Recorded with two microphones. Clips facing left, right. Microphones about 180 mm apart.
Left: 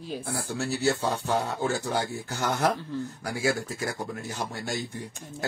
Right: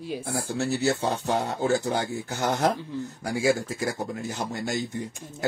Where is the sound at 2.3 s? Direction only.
15° right (ahead or behind).